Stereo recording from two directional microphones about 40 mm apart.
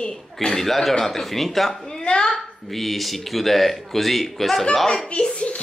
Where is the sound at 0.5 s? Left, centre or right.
Centre.